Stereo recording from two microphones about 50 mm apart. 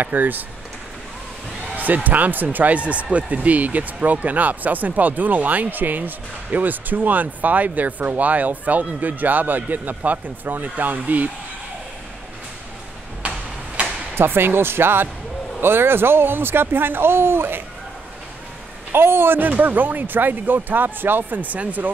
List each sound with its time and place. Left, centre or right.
0.0 s speech: right
2.0 s speech: right
14.1 s speech: right
18.9 s speech: right
19.5 s speech: right